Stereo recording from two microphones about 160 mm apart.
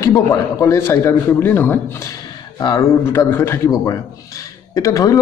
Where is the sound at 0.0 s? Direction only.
20° left (ahead or behind).